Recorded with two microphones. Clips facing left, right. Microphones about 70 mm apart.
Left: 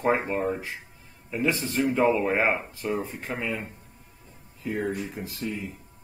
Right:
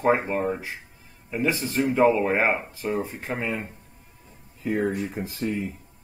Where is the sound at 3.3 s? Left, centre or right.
Centre.